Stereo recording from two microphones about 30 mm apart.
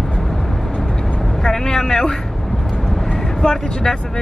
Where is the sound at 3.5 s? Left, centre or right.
Centre.